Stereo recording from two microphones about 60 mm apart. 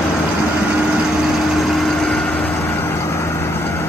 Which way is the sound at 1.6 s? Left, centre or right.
Centre.